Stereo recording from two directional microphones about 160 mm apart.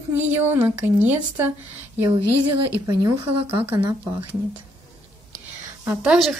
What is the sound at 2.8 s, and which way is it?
Speech, 20° right (ahead or behind).